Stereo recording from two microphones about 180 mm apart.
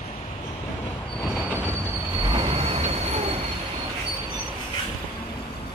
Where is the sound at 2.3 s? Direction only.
30° right (ahead or behind).